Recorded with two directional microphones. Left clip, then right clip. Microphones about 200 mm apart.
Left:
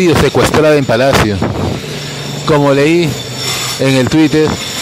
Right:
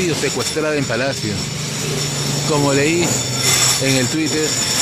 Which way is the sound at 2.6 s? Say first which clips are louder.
Left 7 dB; 45° left (ahead or behind).